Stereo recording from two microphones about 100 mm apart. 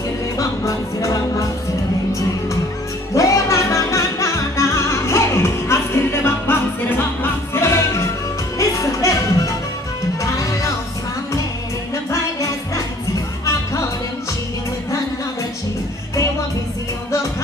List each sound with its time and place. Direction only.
0.4 s music: 35° left (ahead or behind)
3.2 s music: 30° left (ahead or behind)
12.1 s music: 30° left (ahead or behind)